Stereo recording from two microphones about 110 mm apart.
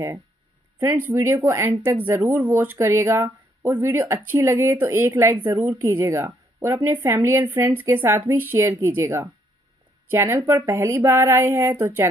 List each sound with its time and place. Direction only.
0.7 s speech: 20° right (ahead or behind)